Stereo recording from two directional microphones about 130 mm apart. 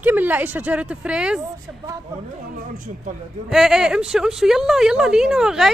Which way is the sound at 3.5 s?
5° right (ahead or behind).